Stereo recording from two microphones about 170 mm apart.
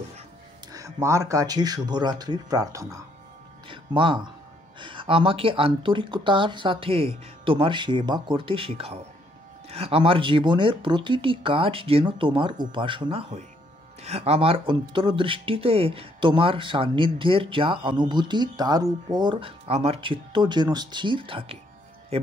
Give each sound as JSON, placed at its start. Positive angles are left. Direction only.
{"t": 0.7, "sound": "speech", "side_deg": -20}
{"t": 3.6, "sound": "speech", "side_deg": -30}